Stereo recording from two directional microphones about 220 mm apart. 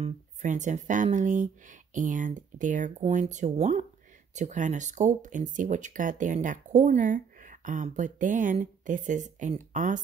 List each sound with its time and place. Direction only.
0.0 s speech: 35° right (ahead or behind)